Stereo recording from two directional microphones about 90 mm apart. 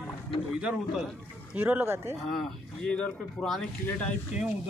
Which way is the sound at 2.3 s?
5° left (ahead or behind).